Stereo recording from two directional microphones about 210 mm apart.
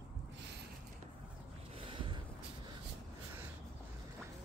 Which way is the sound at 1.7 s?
25° right (ahead or behind).